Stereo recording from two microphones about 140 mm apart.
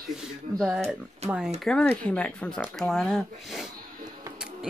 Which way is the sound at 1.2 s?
50° right (ahead or behind).